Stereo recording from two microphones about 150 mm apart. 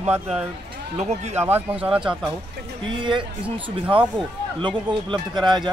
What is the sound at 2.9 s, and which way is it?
Speech, 30° right (ahead or behind).